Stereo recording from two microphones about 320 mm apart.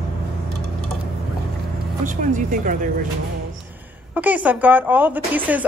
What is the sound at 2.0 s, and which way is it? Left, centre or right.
Speech, right.